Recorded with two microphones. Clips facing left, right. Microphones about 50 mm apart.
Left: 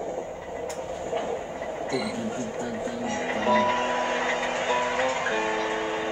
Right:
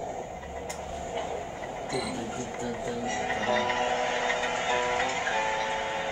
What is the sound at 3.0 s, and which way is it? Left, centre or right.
Music, left.